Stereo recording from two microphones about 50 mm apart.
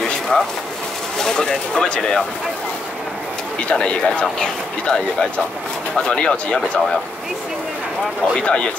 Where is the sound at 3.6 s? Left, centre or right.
Left.